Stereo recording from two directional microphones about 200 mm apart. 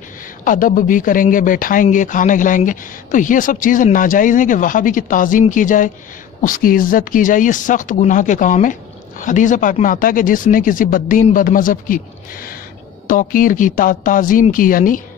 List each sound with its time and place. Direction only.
0.5 s speech: 45° left (ahead or behind)
13.0 s speech: 40° left (ahead or behind)